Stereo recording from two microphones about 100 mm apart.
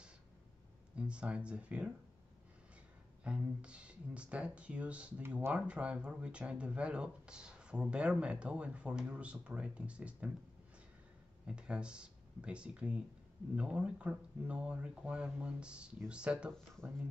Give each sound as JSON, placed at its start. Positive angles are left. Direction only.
{"t": 0.9, "sound": "speech", "side_deg": -10}
{"t": 3.3, "sound": "speech", "side_deg": -10}
{"t": 11.4, "sound": "speech", "side_deg": -10}